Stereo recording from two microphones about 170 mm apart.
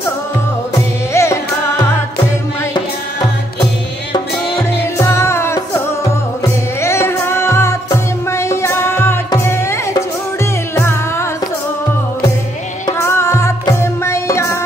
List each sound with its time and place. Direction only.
1.1 s music: 15° left (ahead or behind)
4.9 s music: 15° left (ahead or behind)
6.8 s music: 15° left (ahead or behind)
12.8 s music: 15° left (ahead or behind)